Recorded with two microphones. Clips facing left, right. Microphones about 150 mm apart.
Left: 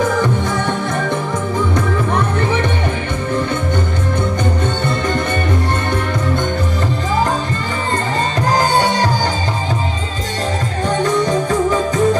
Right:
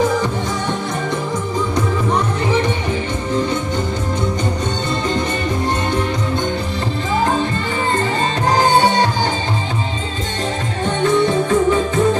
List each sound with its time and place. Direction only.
8.5 s music: 40° left (ahead or behind)
10.9 s music: 40° left (ahead or behind)